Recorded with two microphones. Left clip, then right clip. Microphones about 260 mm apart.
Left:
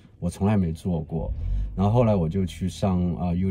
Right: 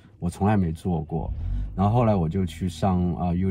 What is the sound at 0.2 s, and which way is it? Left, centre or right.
Speech, centre.